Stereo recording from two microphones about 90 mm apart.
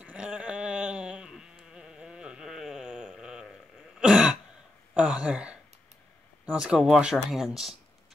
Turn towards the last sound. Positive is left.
turn(degrees=-5)  # may be behind; listen again after turning